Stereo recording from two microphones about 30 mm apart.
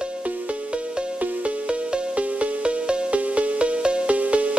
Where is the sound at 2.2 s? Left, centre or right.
Right.